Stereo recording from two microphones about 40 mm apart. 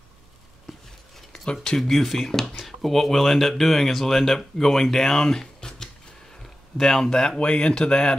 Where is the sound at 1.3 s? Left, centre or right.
Centre.